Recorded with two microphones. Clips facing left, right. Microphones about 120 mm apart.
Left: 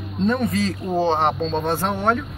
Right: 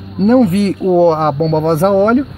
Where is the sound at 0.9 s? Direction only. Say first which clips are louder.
Right 10 dB; 45° right (ahead or behind).